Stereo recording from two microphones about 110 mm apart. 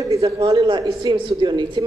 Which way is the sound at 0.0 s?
35° right (ahead or behind).